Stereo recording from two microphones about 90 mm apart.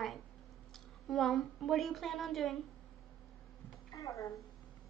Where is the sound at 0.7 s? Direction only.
Centre (ahead or behind).